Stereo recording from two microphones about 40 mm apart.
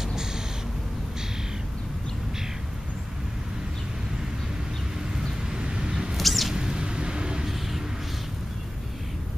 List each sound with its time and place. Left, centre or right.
0.0 s cat: centre
5.5 s vehicle: right
6.1 s a sound: centre
6.5 s vehicle: right
7.4 s vehicle: centre